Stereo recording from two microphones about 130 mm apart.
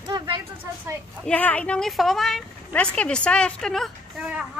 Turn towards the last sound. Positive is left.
turn(degrees=0)  # may be behind; listen again after turning